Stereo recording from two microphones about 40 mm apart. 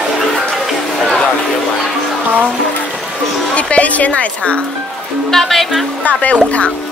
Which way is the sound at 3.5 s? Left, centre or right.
Left.